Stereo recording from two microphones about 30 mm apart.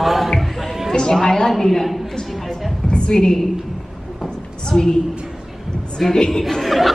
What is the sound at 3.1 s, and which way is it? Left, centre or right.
Speech, left.